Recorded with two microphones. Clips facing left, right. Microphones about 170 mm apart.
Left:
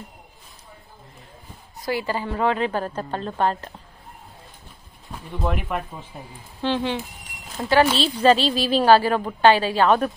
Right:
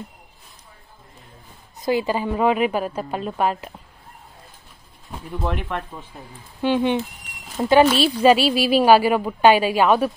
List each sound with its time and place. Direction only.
1.8 s a woman's voice: 20° right (ahead or behind)
5.4 s speech: centre (ahead or behind)
6.6 s a woman's voice: 15° right (ahead or behind)